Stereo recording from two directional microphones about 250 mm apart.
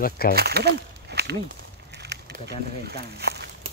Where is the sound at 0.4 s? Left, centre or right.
Right.